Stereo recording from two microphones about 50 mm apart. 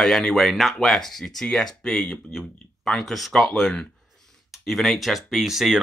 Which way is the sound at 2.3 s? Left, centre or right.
Centre.